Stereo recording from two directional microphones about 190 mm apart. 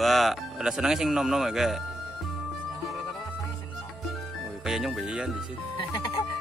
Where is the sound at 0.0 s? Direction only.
Centre (ahead or behind).